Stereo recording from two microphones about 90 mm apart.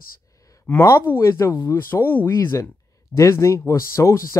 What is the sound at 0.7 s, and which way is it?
Speech, 30° left (ahead or behind).